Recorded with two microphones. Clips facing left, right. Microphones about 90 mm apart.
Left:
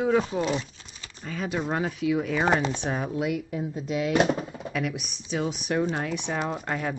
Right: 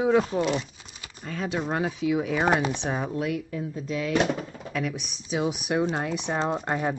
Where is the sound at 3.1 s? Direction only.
10° left (ahead or behind).